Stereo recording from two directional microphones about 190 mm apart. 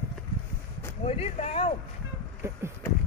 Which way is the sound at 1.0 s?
30° left (ahead or behind).